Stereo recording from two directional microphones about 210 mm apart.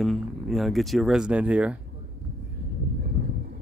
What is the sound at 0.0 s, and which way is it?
Speech, centre (ahead or behind).